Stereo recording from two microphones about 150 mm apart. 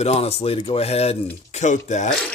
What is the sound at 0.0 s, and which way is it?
Speech, 40° left (ahead or behind).